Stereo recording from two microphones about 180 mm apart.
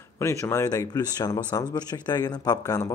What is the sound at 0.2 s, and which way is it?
Speech, 15° left (ahead or behind).